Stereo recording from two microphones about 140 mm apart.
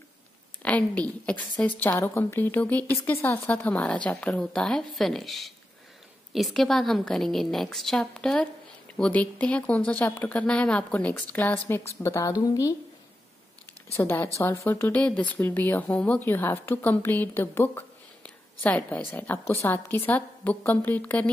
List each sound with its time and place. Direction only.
0.6 s a woman's voice: 10° left (ahead or behind)
13.9 s speech: 15° left (ahead or behind)